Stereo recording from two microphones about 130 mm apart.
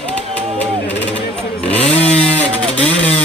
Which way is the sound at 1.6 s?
50° left (ahead or behind).